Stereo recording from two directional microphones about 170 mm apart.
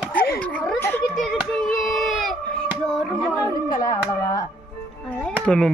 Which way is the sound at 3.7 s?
20° left (ahead or behind).